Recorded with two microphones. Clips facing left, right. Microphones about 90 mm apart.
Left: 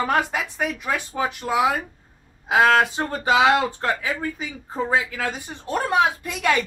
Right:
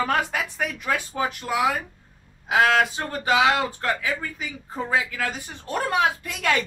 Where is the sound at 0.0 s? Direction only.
15° left (ahead or behind).